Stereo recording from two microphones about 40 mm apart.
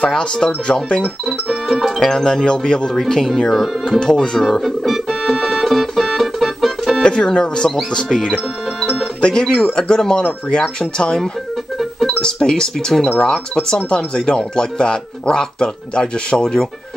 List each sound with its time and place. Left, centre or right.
0.2 s speech: centre
1.2 s speech: centre
2.0 s speech: centre
3.0 s speech: centre
4.4 s speech: centre
4.6 s music: centre
7.0 s speech: left
8.8 s music: centre
9.2 s speech: centre
11.8 s music: centre
12.2 s speech: centre